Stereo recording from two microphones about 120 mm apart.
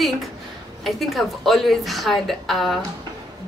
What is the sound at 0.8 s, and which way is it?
Speech, centre (ahead or behind).